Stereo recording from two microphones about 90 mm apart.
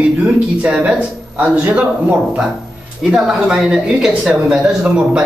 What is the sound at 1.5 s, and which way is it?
A man's voice, 15° right (ahead or behind).